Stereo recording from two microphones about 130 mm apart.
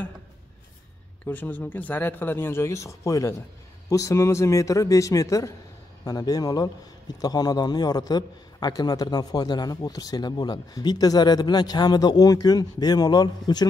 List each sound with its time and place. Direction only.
1.2 s a man's voice: 15° left (ahead or behind); by 13.7 s 30° left (ahead or behind)